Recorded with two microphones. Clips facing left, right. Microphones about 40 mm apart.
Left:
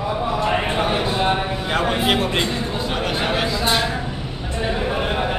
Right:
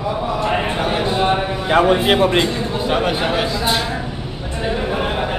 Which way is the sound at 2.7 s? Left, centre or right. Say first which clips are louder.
Right 5 dB; centre.